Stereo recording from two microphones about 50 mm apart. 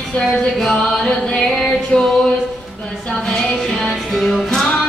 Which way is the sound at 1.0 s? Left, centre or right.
Centre.